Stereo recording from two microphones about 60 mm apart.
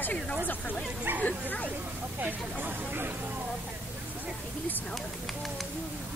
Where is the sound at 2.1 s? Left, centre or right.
Right.